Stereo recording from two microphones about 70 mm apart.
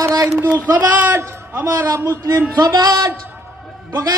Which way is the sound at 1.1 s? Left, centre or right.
Right.